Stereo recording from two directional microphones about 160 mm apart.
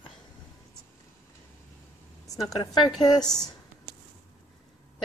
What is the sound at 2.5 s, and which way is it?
Speech, 25° left (ahead or behind).